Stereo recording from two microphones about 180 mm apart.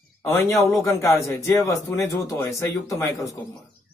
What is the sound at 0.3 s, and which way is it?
Speech, 15° left (ahead or behind).